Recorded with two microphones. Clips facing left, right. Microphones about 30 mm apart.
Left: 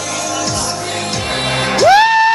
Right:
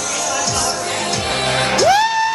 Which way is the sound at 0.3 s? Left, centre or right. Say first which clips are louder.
Left 1 dB; left.